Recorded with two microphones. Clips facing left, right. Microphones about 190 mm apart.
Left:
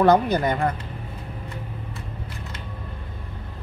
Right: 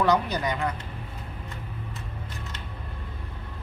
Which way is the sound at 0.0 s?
50° left (ahead or behind).